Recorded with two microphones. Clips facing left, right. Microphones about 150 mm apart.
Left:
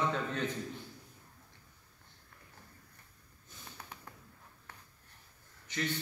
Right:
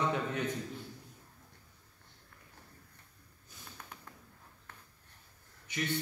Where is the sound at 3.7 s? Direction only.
10° left (ahead or behind).